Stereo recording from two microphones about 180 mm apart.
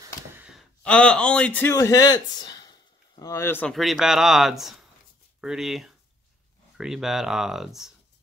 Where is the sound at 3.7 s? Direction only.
Centre (ahead or behind).